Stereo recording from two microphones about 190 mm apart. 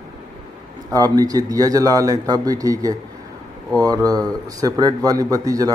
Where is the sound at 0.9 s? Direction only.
20° right (ahead or behind).